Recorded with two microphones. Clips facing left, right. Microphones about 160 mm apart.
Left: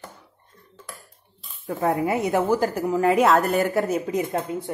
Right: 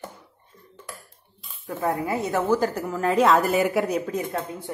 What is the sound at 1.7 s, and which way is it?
A woman's voice, 20° left (ahead or behind).